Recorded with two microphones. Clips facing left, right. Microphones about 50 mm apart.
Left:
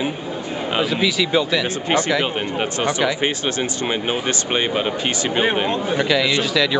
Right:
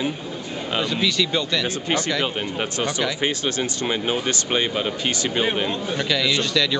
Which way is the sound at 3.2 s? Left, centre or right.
Left.